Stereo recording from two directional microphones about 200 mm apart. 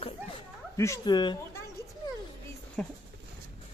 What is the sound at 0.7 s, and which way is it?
Speech, 15° left (ahead or behind).